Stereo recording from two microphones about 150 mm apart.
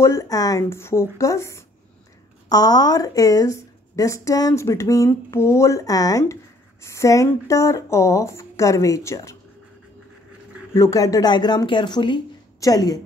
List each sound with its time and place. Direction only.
0.0 s a woman's voice: 20° left (ahead or behind)
10.7 s a woman's voice: 20° left (ahead or behind)